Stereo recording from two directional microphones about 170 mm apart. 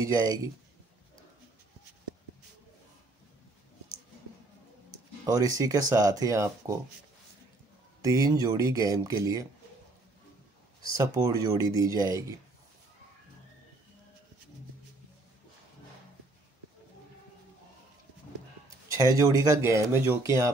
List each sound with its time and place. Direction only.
0.0 s speech: 20° right (ahead or behind)
5.2 s speech: 20° right (ahead or behind)
8.0 s speech: 20° right (ahead or behind)
11.0 s speech: 20° right (ahead or behind)
18.9 s speech: 20° right (ahead or behind)